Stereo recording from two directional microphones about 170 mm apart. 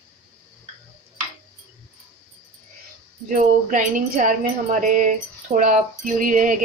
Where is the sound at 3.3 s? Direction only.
50° right (ahead or behind).